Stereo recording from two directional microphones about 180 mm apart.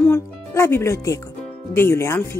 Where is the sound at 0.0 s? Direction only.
15° left (ahead or behind).